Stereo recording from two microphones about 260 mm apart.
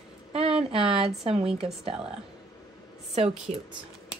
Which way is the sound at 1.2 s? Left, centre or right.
Right.